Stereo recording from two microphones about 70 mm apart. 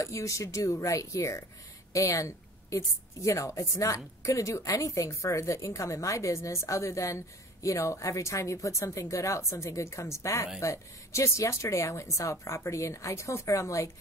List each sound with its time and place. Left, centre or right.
0.0 s a woman's voice: left